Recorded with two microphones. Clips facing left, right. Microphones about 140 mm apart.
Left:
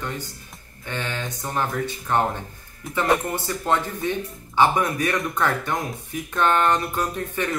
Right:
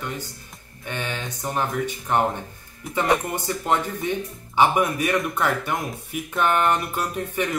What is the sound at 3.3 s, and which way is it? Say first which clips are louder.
Speech: even; 15° right (ahead or behind).